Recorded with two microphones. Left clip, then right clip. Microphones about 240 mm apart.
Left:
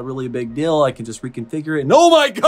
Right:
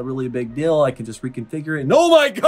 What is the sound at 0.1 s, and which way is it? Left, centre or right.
Speech, centre.